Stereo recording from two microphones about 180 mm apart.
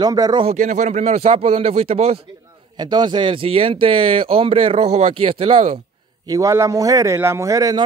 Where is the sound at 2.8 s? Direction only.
25° right (ahead or behind).